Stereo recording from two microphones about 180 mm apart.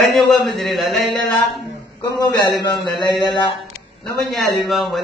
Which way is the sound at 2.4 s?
25° left (ahead or behind).